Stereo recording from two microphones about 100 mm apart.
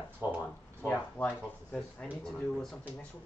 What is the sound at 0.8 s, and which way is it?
Speech, 15° left (ahead or behind).